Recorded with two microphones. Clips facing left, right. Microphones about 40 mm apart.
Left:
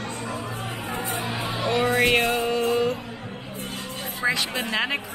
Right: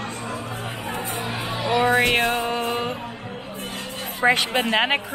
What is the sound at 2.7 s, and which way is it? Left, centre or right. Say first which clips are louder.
Music: left 3 dB; right.